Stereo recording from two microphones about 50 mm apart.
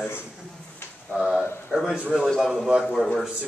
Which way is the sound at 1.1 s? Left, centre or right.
Centre.